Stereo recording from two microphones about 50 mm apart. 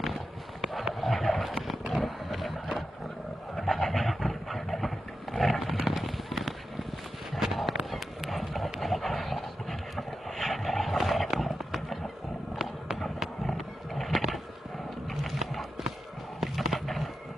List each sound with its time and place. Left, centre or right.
0.0 s clip-clop: centre
0.9 s a sound: centre
7.3 s run: centre
7.9 s clip-clop: centre
8.8 s dog: centre
12.9 s roaring cats: centre
13.6 s a sound: centre
16.3 s skateboard: centre